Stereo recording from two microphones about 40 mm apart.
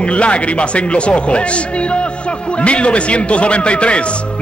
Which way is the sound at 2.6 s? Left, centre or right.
Left.